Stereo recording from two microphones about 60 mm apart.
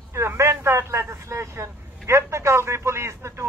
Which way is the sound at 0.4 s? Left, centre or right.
Right.